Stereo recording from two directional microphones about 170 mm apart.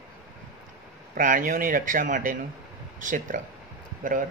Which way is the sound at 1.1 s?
50° right (ahead or behind).